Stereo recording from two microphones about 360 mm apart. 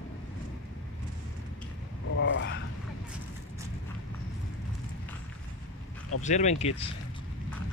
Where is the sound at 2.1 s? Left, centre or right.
Left.